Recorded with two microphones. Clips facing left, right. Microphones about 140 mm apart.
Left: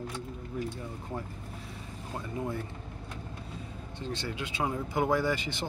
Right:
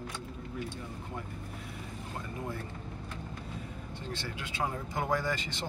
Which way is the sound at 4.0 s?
20° left (ahead or behind).